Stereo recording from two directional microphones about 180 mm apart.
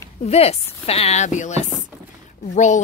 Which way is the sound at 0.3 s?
35° left (ahead or behind).